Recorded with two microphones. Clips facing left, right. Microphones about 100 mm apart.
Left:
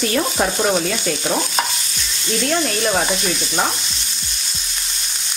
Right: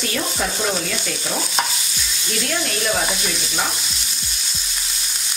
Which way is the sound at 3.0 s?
Centre (ahead or behind).